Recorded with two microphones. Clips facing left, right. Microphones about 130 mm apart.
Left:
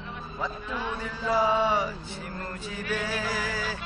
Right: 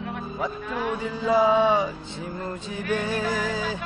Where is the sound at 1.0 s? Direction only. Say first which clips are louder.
Right 5 dB; 15° right (ahead or behind).